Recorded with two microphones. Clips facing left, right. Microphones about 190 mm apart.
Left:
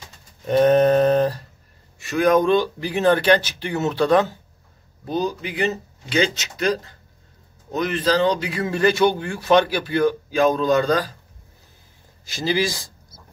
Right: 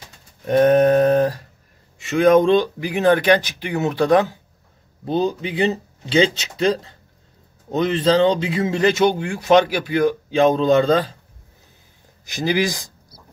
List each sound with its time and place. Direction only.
0.5 s a sound: 10° right (ahead or behind)
2.0 s speech: 25° right (ahead or behind)
5.0 s speech: 25° right (ahead or behind)
12.3 s speech: 15° right (ahead or behind)